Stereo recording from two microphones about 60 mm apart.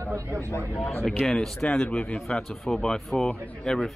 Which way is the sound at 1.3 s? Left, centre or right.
Centre.